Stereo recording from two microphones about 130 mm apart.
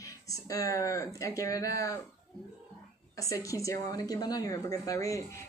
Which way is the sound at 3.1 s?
25° left (ahead or behind).